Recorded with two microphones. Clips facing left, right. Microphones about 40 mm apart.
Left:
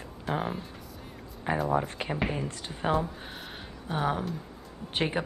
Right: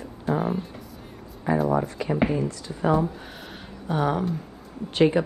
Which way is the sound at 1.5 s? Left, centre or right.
Left.